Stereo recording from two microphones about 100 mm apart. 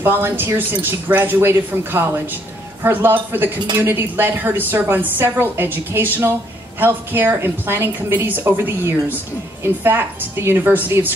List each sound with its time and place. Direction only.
0.0 s a woman's voice: 20° right (ahead or behind)